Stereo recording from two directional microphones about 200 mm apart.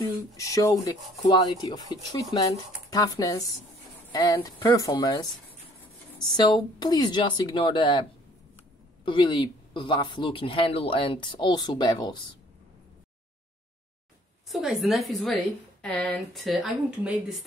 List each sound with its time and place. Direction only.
0.3 s speech: 15° left (ahead or behind)
14.5 s a woman's voice: centre (ahead or behind)